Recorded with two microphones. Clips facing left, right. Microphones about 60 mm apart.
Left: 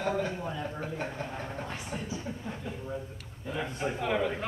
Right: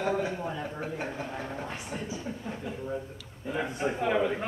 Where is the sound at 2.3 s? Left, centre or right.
Centre.